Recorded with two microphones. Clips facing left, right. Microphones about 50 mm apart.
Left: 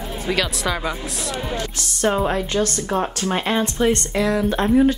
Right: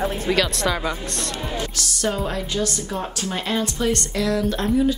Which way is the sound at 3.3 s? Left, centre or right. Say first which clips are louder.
Left 3 dB; left.